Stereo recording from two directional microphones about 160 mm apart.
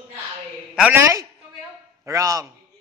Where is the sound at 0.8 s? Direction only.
15° right (ahead or behind).